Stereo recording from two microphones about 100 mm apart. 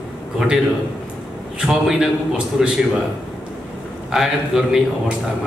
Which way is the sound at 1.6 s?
5° right (ahead or behind).